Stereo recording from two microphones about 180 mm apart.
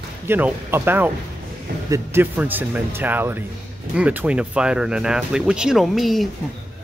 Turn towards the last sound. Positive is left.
turn(degrees=0)  # may be behind; listen again after turning